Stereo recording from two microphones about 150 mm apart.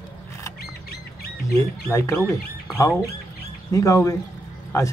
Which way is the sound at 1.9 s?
20° left (ahead or behind).